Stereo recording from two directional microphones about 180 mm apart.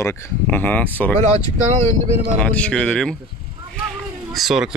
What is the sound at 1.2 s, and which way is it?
Speech, 40° right (ahead or behind).